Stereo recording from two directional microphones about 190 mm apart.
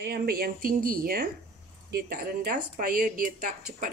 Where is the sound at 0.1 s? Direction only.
50° right (ahead or behind).